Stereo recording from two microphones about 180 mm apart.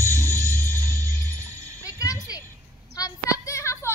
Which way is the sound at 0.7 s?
10° left (ahead or behind).